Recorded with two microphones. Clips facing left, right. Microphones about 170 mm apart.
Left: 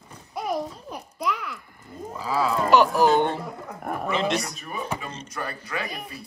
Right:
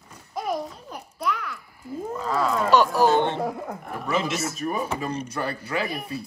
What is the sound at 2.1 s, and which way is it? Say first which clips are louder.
Speech: even; 5° left (ahead or behind).